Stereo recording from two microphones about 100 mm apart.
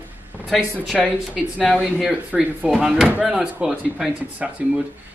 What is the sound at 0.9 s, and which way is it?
Speech, centre (ahead or behind).